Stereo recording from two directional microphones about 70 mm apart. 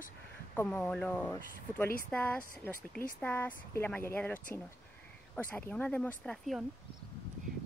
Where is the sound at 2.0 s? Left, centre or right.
Centre.